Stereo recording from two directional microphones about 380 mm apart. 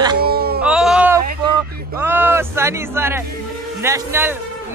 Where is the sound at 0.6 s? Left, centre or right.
Centre.